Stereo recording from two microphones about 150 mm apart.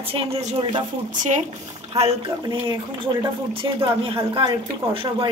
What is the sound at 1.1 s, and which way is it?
Speech, 60° right (ahead or behind).